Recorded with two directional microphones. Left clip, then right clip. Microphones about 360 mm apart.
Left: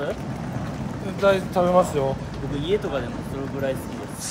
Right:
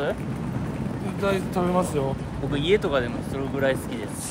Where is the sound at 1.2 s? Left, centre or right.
Centre.